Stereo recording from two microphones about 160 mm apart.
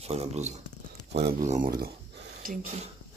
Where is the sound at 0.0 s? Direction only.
40° right (ahead or behind).